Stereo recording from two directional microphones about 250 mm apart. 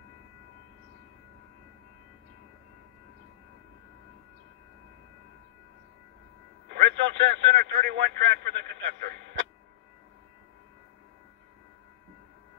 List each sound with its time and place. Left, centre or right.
6.7 s radio: right